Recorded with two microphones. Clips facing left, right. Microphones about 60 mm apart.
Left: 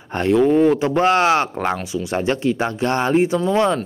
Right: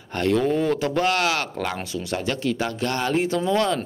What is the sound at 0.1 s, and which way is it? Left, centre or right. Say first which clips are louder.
Speech: left 6 dB; left.